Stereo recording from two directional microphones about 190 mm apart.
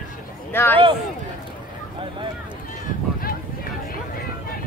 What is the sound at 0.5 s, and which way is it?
Speech, 10° left (ahead or behind).